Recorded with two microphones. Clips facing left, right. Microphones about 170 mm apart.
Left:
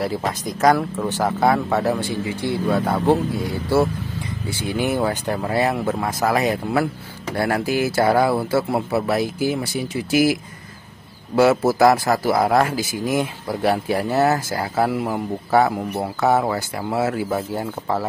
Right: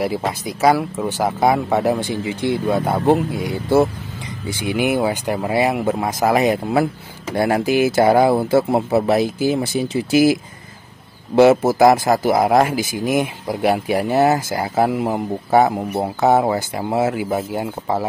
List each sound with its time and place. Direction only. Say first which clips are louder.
0.2 s speech: right 1 dB; 5° right (ahead or behind)